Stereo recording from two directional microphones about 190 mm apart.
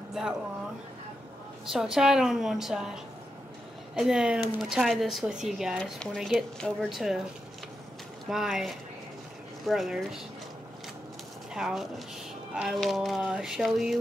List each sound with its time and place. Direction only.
1.7 s speech: centre (ahead or behind)
8.3 s speech: 5° right (ahead or behind)
11.5 s speech: centre (ahead or behind)